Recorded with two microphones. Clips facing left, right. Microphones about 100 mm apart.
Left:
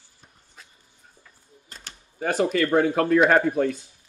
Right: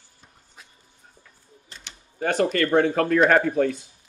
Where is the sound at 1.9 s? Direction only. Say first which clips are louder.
Left 1 dB; 40° left (ahead or behind).